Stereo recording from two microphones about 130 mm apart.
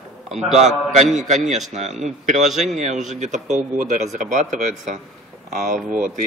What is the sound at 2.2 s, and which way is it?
Speech, 65° right (ahead or behind).